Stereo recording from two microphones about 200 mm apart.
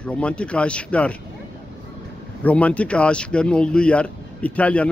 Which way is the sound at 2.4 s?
5° left (ahead or behind).